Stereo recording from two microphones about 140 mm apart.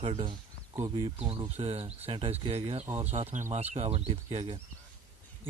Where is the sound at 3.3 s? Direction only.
55° right (ahead or behind); by 4.6 s 40° right (ahead or behind).